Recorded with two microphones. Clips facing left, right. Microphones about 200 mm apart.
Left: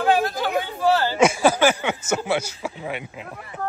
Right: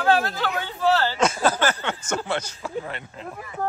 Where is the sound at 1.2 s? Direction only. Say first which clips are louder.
Left 4 dB; 10° left (ahead or behind).